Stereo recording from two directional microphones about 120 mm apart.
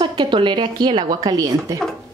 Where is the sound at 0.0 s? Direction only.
40° right (ahead or behind).